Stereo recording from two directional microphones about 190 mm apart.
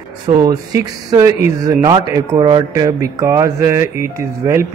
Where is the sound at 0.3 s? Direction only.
20° right (ahead or behind).